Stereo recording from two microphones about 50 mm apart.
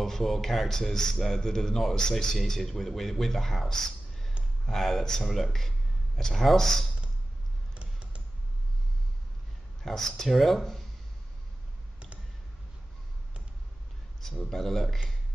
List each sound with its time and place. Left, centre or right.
0.0 s a man's voice: centre
7.7 s a sound: right
9.8 s speech: centre
14.2 s a man's voice: centre